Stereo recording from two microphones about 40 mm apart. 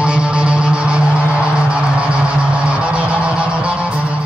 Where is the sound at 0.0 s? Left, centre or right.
Right.